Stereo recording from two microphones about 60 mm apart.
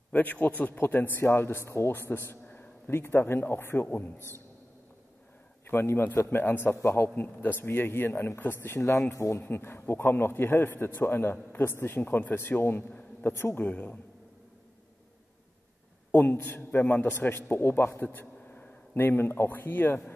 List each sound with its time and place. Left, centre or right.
0.1 s a man's voice: left
1.6 s a man's voice: left
1.9 s a man's voice: left
5.7 s a man's voice: left
6.8 s speech: left
7.2 s a man's voice: left
8.7 s speech: left
9.4 s a man's voice: left
13.6 s a man's voice: left
16.1 s a man's voice: left